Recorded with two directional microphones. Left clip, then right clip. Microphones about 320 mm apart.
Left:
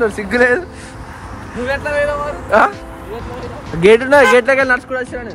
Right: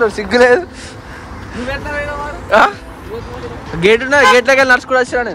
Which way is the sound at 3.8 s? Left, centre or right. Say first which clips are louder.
Left 1 dB; centre.